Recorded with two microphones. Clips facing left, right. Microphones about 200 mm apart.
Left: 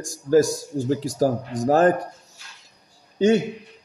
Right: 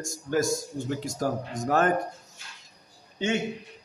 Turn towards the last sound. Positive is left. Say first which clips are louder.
# left 10 dB
turn(degrees=40)  # may be behind; listen again after turning